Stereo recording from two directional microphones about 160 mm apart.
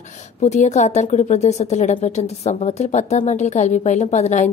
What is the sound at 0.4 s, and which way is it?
A woman's voice, 45° left (ahead or behind).